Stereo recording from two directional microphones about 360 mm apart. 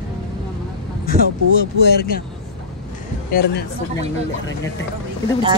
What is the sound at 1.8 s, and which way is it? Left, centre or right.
Speech, left.